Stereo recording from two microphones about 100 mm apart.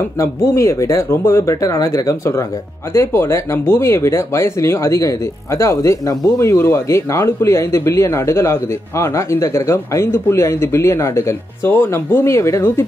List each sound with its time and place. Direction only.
0.2 s speech: 30° left (ahead or behind)